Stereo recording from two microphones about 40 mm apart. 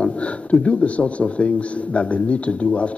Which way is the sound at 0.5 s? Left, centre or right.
Left.